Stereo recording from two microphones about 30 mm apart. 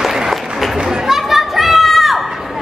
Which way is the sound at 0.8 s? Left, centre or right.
Centre.